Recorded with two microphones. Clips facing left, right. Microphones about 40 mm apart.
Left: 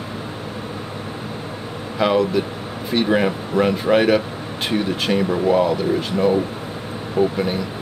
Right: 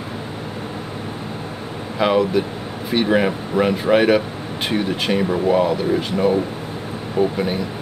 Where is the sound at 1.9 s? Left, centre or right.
Centre.